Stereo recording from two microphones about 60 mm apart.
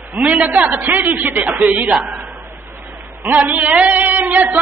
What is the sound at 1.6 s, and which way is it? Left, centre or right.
Speech, centre.